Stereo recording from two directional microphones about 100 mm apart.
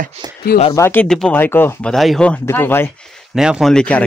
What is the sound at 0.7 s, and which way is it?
Speech, 25° left (ahead or behind).